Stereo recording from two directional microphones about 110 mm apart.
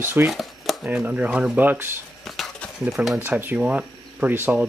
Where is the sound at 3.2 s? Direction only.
20° right (ahead or behind).